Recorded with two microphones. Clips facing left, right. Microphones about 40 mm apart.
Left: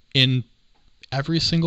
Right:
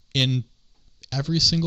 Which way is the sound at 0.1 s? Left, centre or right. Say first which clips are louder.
Left 4 dB; left.